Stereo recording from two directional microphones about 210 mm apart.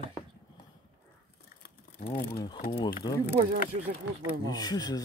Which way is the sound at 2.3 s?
20° left (ahead or behind).